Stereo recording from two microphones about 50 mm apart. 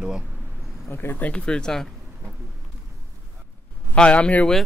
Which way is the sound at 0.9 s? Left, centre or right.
Left.